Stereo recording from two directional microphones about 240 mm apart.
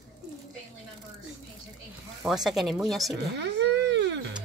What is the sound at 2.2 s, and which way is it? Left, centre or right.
Speech, centre.